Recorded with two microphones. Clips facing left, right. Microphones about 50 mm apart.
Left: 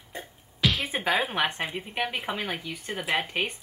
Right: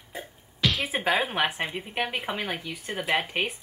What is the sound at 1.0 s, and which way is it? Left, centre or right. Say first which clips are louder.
Speech: right 1 dB; centre.